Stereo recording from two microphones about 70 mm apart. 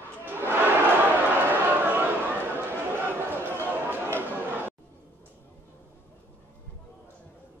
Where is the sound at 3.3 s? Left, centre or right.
Right.